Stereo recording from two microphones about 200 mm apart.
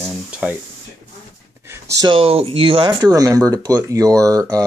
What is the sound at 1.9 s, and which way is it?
Speech, 25° right (ahead or behind).